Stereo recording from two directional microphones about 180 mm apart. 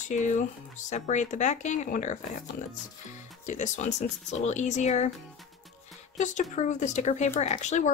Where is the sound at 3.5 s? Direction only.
40° left (ahead or behind).